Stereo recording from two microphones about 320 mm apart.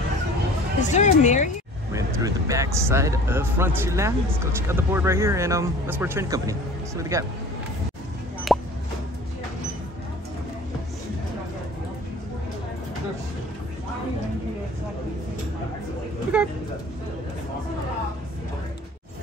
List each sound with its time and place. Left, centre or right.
0.7 s speech: left
1.9 s speech: centre
8.5 s a sound: centre